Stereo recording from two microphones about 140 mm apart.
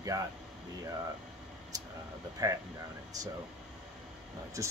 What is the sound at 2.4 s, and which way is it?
Speech, 25° right (ahead or behind).